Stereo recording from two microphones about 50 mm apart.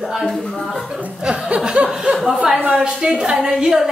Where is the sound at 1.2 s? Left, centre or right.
Centre.